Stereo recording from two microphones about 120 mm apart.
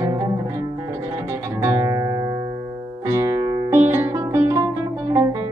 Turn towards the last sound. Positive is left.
turn(degrees=-25)  # may be behind; listen again after turning